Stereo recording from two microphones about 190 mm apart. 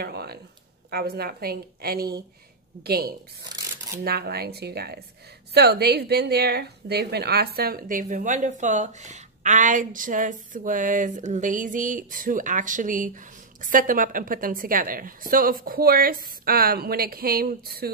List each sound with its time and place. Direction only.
0.0 s a woman's voice: 55° right (ahead or behind)
3.4 s a sound: 20° right (ahead or behind)
4.0 s a woman's voice: 55° right (ahead or behind)